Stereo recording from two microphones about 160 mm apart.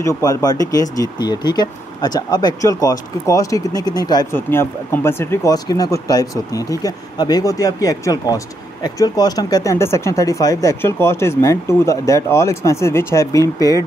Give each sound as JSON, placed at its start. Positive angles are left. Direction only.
{"t": 0.0, "sound": "speech", "side_deg": 20}